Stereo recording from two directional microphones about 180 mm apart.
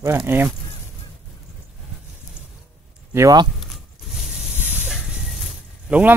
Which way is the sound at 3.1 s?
20° right (ahead or behind).